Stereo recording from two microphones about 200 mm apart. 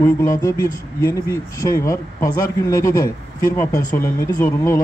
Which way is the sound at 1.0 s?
15° left (ahead or behind).